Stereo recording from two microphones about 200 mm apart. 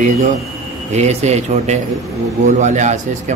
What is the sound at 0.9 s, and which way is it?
Speech, 35° right (ahead or behind).